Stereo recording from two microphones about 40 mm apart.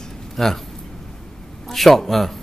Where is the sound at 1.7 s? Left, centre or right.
Centre.